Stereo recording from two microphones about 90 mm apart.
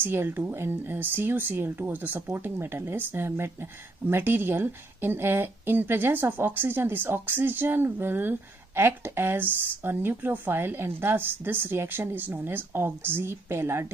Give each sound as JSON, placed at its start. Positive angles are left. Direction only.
{"t": 0.0, "sound": "a woman's voice", "side_deg": -25}